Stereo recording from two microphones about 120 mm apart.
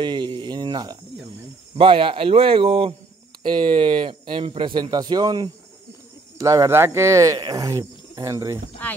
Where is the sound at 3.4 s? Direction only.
40° right (ahead or behind).